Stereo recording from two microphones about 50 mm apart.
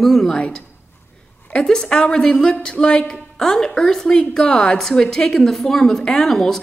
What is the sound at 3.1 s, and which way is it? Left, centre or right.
A woman's voice, centre.